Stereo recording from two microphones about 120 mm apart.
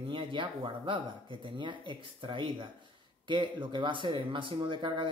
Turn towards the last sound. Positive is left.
turn(degrees=-40)  # may be behind; listen again after turning